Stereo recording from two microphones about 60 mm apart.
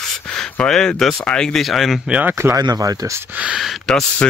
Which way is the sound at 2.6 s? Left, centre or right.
Right.